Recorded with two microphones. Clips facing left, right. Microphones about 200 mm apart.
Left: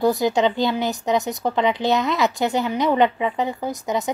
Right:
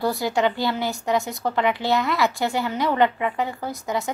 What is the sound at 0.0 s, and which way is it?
A woman's voice, 20° left (ahead or behind).